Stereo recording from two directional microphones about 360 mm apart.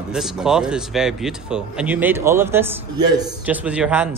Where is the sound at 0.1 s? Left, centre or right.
Centre.